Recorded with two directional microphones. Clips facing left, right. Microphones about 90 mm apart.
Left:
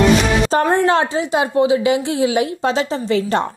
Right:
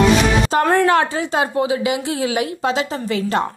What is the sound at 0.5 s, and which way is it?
A woman's voice, 30° left (ahead or behind).